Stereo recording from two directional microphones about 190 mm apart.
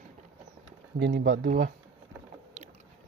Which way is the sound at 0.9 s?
65° right (ahead or behind).